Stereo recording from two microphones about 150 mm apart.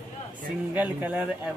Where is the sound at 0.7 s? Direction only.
10° right (ahead or behind).